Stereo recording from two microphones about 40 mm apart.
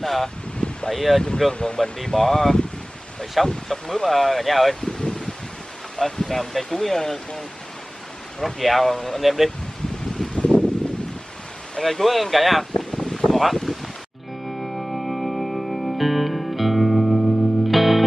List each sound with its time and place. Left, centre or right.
0.0 s speech: centre
0.6 s wind: left
0.9 s speech: centre
1.5 s speech: left
2.0 s speech: centre
4.9 s rustling leaves: centre
5.9 s speech: centre
9.8 s rustling leaves: centre
10.3 s a sound: left
10.8 s a sound: centre
11.8 s speech: centre
13.3 s a sound: centre
14.4 s music: centre